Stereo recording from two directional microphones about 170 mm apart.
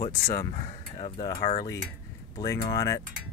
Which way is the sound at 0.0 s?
25° left (ahead or behind).